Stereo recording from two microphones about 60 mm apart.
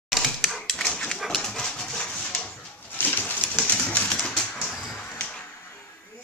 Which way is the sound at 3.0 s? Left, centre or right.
Left.